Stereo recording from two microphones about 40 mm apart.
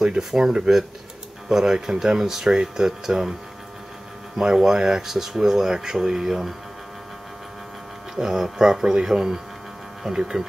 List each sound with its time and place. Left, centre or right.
0.0 s speech: centre
4.4 s speech: centre
8.2 s speech: centre